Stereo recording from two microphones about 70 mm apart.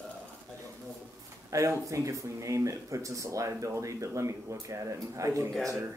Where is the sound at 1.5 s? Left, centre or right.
Right.